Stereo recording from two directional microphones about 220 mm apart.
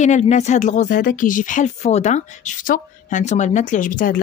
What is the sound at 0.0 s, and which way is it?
Speech, 30° left (ahead or behind).